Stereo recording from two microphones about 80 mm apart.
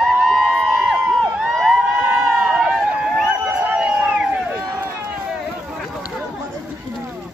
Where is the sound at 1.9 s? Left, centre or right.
Centre.